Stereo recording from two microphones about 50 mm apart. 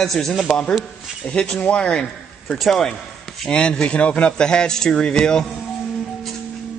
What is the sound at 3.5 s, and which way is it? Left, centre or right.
A man's voice, left.